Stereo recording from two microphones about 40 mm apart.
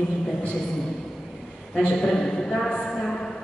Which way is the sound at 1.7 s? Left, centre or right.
Centre.